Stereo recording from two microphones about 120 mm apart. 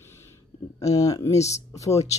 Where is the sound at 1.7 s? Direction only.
25° left (ahead or behind).